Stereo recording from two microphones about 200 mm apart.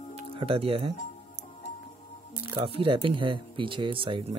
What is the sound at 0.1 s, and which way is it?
Speech, 25° right (ahead or behind).